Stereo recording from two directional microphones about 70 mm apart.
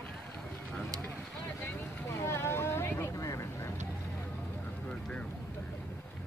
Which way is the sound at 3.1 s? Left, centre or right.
Left.